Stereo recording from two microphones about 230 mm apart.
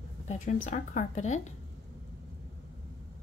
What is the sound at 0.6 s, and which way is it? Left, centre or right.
Speech, left.